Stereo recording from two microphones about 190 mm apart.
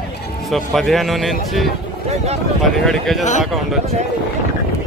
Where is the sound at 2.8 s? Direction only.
Centre (ahead or behind).